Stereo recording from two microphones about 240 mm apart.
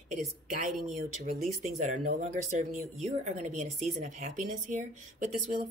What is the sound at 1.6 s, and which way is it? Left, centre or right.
A woman's voice, right.